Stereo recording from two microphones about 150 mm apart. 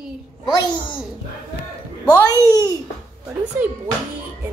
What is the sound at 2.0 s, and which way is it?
Speech, 25° left (ahead or behind).